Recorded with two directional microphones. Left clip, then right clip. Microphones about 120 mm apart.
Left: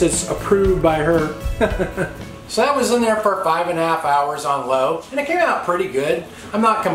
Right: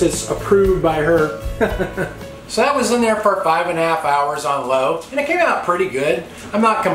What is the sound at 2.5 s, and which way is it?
Speech, 5° left (ahead or behind).